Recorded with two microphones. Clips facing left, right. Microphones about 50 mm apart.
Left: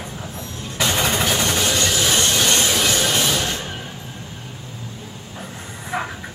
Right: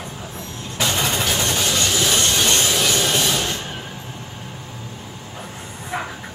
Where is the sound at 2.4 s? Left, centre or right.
Left.